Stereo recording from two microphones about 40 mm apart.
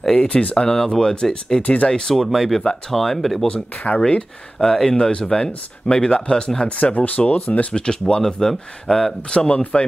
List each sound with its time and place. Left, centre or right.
0.1 s speech: left
1.6 s speech: left
1.9 s speech: centre
2.2 s speech: centre
3.9 s speech: left
4.6 s speech: centre
4.9 s speech: left
6.8 s speech: left; by 9.6 s centre
9.6 s speech: left